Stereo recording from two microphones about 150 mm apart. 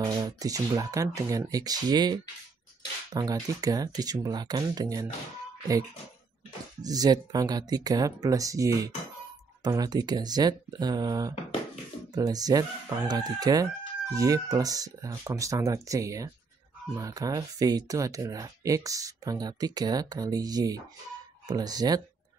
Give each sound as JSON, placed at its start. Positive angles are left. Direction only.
{"t": 0.0, "sound": "speech", "side_deg": -25}
{"t": 6.8, "sound": "speech", "side_deg": -25}